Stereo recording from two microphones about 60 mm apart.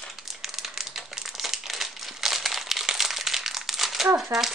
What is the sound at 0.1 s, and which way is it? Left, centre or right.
Crumpling, centre.